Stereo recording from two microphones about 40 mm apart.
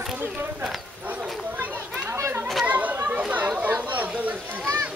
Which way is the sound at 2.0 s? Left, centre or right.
Right.